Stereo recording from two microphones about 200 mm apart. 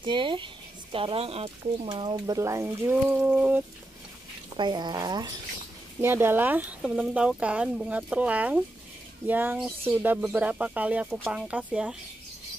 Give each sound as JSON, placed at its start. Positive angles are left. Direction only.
{"t": 0.0, "sound": "speech", "side_deg": -25}
{"t": 4.6, "sound": "speech", "side_deg": -20}